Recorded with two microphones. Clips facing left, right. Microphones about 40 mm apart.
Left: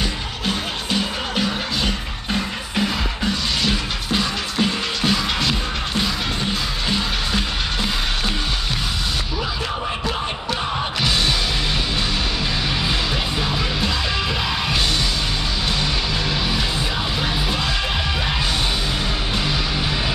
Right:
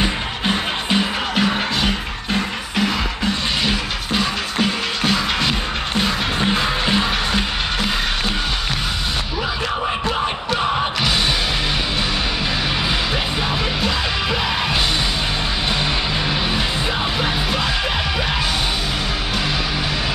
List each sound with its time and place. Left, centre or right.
0.0 s music: right
3.6 s music: centre